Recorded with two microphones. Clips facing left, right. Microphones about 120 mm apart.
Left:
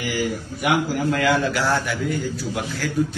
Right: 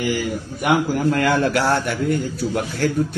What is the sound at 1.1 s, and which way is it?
A man's voice, 55° right (ahead or behind).